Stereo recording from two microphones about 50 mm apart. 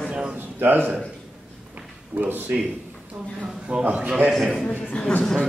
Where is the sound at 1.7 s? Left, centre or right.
Right.